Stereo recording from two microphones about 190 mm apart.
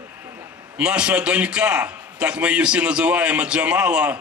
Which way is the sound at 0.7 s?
5° right (ahead or behind).